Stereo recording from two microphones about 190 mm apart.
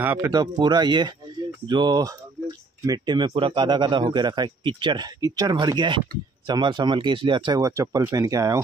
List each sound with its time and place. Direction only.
0.0 s a man's voice: 15° right (ahead or behind)